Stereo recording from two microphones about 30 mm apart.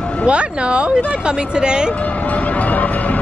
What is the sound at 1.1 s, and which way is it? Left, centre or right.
Speech, right.